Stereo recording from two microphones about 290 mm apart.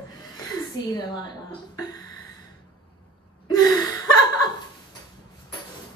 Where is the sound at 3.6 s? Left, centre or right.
Centre.